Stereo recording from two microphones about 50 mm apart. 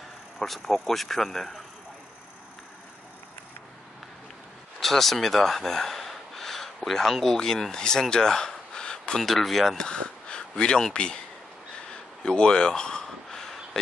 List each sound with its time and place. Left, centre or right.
0.4 s speech: centre
4.7 s speech: centre
9.2 s speech: centre
9.8 s speech: centre
11.9 s a sound: centre